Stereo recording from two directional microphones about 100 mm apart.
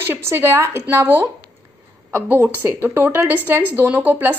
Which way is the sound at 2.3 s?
20° right (ahead or behind).